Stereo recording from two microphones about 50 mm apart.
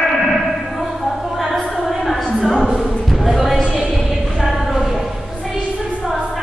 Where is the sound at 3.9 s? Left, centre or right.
Centre.